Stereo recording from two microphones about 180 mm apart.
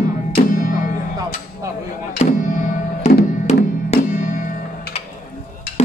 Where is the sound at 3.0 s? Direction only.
40° left (ahead or behind).